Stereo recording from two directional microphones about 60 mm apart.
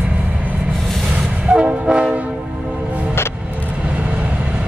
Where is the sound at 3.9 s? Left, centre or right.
Centre.